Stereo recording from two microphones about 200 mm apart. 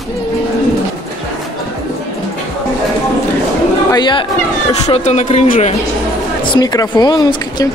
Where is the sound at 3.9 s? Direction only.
25° left (ahead or behind).